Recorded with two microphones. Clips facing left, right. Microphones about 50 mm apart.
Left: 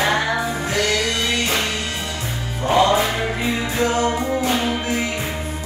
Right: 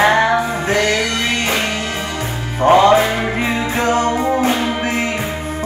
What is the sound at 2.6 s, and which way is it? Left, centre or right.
Music, right.